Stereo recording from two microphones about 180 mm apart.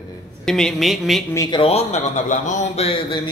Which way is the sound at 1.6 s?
35° left (ahead or behind).